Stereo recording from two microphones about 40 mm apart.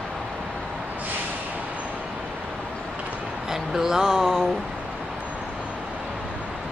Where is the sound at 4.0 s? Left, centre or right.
Centre.